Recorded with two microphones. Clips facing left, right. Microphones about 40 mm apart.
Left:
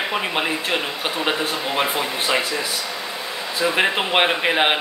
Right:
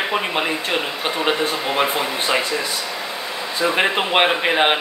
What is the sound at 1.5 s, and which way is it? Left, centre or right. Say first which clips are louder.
Speech: right 2 dB; centre.